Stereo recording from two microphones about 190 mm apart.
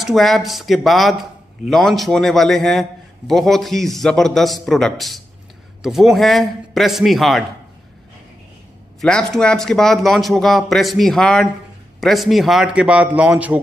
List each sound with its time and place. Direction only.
0.0 s a man's voice: centre (ahead or behind)
9.0 s a man's voice: 5° left (ahead or behind)